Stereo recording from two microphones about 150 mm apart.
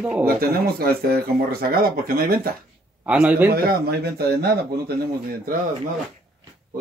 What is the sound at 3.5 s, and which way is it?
Speech, 90° right.